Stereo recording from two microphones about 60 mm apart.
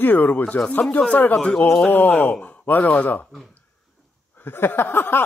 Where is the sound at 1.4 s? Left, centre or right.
Centre.